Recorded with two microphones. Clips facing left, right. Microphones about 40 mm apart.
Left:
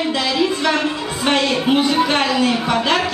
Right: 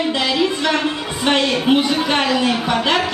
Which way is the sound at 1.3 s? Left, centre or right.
Centre.